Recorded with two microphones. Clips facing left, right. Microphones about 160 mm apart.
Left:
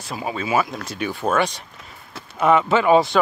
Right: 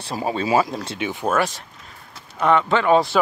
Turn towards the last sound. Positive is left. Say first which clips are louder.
# left 1 dB
turn(degrees=0)  # may be behind; listen again after turning